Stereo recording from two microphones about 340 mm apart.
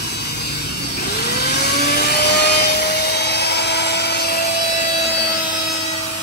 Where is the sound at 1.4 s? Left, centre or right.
Left.